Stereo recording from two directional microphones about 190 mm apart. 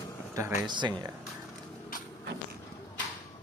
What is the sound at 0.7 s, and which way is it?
Speech, 25° right (ahead or behind).